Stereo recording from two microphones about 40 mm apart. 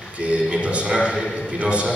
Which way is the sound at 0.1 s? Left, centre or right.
Right.